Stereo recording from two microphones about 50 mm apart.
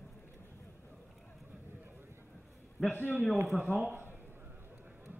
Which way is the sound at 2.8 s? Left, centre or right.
Centre.